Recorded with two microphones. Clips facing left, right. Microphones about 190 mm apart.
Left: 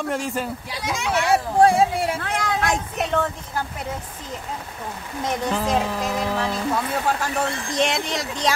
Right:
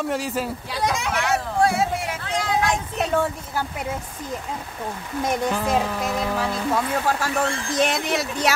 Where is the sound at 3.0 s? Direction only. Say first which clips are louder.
Right 2 dB; 10° right (ahead or behind).